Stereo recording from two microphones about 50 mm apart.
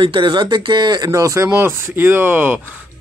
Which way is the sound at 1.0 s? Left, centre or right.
Right.